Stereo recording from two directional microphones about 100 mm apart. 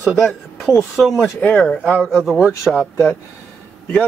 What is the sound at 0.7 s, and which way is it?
Speech, 5° right (ahead or behind).